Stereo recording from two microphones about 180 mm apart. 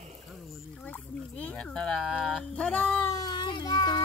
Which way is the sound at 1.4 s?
5° left (ahead or behind).